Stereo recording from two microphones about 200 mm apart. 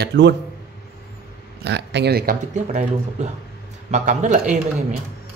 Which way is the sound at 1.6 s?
60° right (ahead or behind).